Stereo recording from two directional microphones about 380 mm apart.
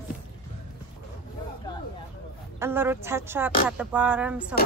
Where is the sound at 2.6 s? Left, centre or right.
Centre.